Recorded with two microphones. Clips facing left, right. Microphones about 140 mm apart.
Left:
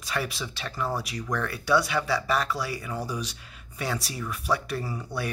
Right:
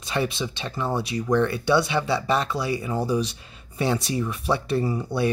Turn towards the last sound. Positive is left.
turn(degrees=-25)  # may be behind; listen again after turning